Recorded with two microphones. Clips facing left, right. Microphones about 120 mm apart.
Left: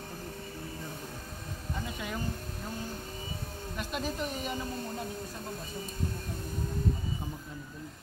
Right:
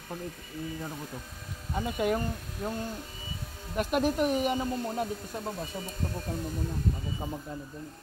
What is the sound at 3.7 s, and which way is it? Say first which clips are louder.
Speech: right 9 dB; 55° right (ahead or behind).